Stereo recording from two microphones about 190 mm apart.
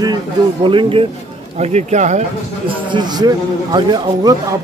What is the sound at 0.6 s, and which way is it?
A man's voice, 25° right (ahead or behind).